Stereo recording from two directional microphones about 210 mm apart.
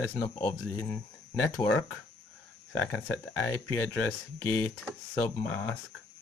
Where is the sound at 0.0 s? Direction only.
15° left (ahead or behind).